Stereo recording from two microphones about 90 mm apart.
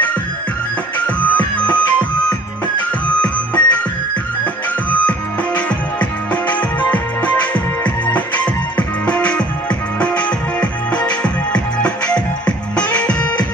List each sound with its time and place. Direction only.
0.9 s music: 15° left (ahead or behind)
3.2 s music: 15° left (ahead or behind)
5.0 s music: 15° left (ahead or behind)